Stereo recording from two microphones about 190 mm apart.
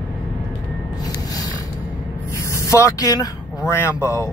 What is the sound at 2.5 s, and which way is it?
Speech, 15° left (ahead or behind).